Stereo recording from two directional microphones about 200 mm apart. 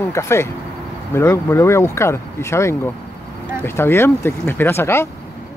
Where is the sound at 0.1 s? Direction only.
15° left (ahead or behind).